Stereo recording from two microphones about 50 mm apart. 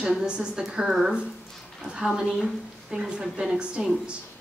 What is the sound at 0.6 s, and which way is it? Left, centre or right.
A woman's voice, centre.